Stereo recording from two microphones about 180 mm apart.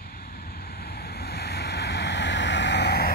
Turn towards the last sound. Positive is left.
turn(degrees=65)  # may be behind; listen again after turning